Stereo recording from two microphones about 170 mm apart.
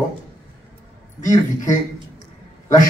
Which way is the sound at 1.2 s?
50° left (ahead or behind).